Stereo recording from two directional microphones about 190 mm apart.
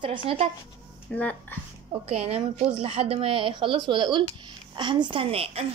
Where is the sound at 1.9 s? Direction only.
30° right (ahead or behind).